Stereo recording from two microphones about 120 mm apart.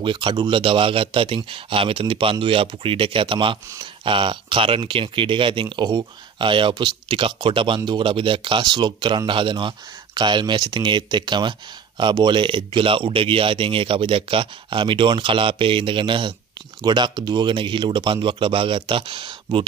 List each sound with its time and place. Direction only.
0.0 s speech: 40° right (ahead or behind)